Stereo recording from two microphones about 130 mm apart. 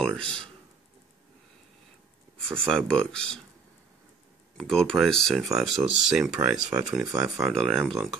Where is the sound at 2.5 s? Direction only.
5° left (ahead or behind).